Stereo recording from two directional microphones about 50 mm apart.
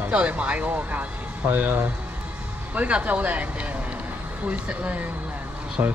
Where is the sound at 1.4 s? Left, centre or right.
Right.